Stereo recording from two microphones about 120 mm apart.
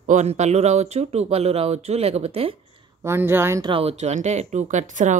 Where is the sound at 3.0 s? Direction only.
20° right (ahead or behind).